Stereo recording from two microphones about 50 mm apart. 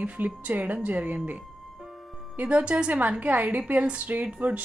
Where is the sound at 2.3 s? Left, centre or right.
Right.